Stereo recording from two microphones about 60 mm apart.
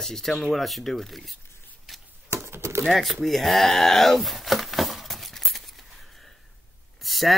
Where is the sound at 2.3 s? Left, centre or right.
Right.